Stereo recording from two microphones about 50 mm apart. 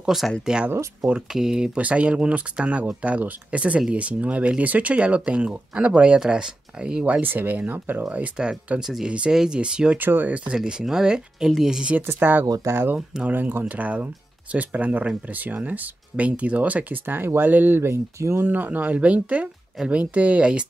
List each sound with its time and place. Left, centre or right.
0.0 s speech: centre
1.3 s speech: centre
1.8 s speech: right
7.1 s speech: right
8.4 s speech: centre
9.0 s speech: right
9.9 s speech: right
10.3 s speech: centre
12.1 s speech: right
12.6 s speech: right
13.3 s speech: right
17.0 s speech: right
17.8 s speech: right
18.4 s speech: right